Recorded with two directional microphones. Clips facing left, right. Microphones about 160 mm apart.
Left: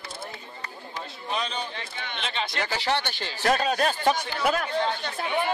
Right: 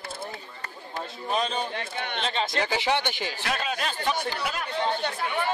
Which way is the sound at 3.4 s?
40° left (ahead or behind).